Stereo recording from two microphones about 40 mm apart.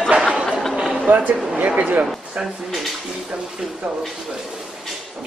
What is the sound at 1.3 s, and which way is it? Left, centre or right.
Speech, centre.